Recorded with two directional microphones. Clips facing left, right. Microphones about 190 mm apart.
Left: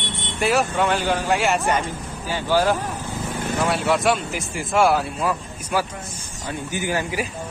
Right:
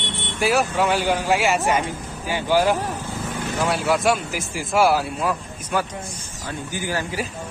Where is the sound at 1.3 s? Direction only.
Centre (ahead or behind).